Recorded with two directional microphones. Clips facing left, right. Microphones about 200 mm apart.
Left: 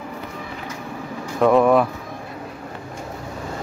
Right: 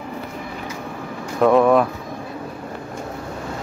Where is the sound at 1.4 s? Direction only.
Centre (ahead or behind).